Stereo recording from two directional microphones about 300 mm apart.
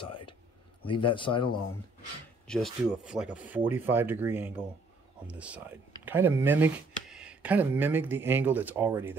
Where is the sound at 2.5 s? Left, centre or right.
Centre.